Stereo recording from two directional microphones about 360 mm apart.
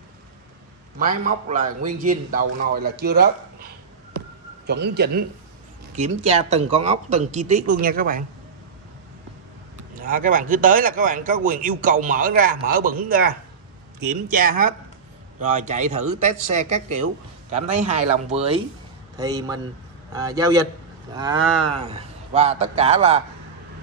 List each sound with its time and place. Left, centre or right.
0.9 s a man's voice: right
4.6 s a man's voice: right
9.9 s a man's voice: right